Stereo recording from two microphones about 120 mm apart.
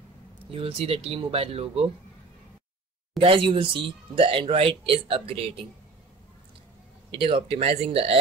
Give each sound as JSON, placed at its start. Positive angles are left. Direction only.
{"t": 0.5, "sound": "speech", "side_deg": -50}
{"t": 3.2, "sound": "speech", "side_deg": -45}
{"t": 7.1, "sound": "speech", "side_deg": -45}